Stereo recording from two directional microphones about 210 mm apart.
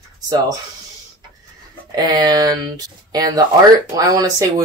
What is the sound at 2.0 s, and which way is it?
Speech, 20° right (ahead or behind).